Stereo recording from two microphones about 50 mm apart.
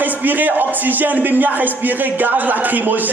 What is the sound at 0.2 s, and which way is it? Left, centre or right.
A man's voice, right.